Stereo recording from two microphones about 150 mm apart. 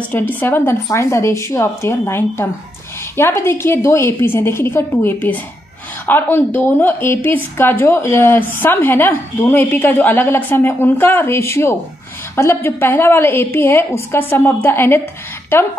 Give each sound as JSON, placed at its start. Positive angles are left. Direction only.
{"t": 0.1, "sound": "a woman's voice", "side_deg": 10}